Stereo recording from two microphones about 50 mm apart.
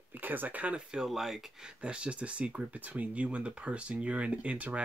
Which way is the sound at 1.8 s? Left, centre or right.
Right.